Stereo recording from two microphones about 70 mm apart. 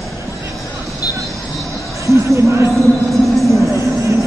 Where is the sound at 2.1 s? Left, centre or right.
Right.